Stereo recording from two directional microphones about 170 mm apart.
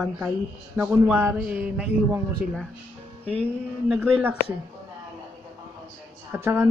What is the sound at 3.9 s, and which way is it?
Speech, 10° right (ahead or behind).